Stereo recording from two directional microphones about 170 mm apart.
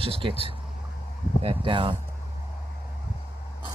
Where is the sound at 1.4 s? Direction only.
30° right (ahead or behind).